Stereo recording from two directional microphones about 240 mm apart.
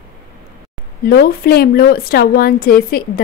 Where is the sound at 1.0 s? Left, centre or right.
Left.